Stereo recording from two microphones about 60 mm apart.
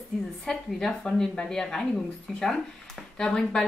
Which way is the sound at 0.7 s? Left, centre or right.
Centre.